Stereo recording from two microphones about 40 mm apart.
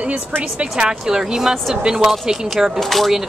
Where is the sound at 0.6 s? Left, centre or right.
Right.